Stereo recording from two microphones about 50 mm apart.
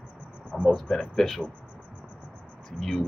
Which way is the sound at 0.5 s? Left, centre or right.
Centre.